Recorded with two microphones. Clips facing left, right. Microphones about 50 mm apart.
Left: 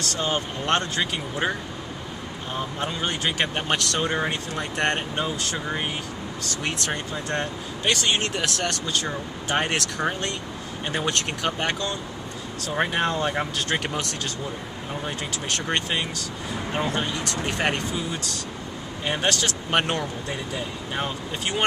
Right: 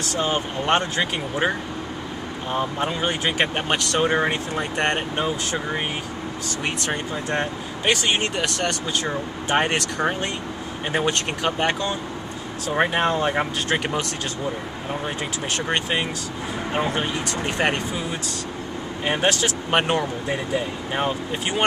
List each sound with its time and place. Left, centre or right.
0.1 s speech: centre
2.9 s speech: centre
9.7 s speech: centre
15.0 s speech: centre
17.5 s speech: centre
19.0 s speech: centre